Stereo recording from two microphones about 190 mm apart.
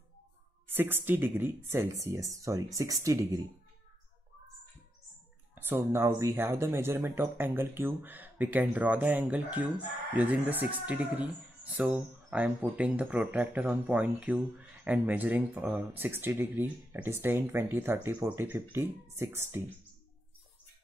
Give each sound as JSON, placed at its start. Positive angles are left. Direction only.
{"t": 0.7, "sound": "speech", "side_deg": -10}
{"t": 5.5, "sound": "speech", "side_deg": -10}